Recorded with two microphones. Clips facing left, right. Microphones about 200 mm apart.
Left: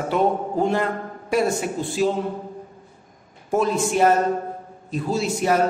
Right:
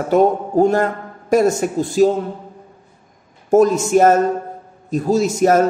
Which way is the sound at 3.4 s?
45° right (ahead or behind).